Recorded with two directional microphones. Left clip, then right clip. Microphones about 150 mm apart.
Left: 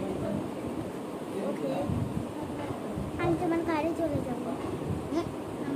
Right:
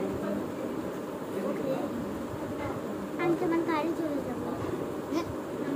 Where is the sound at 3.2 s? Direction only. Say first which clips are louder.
Right 1 dB; 20° left (ahead or behind).